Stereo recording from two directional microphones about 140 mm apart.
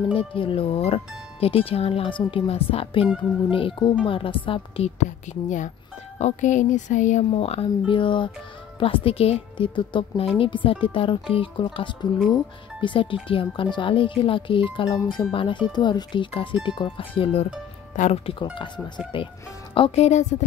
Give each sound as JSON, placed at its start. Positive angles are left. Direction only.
{"t": 0.1, "sound": "speech", "side_deg": 40}
{"t": 5.2, "sound": "speech", "side_deg": 60}
{"t": 7.3, "sound": "speech", "side_deg": 45}
{"t": 17.9, "sound": "speech", "side_deg": 55}
{"t": 18.2, "sound": "speech", "side_deg": 35}
{"t": 19.7, "sound": "speech", "side_deg": 45}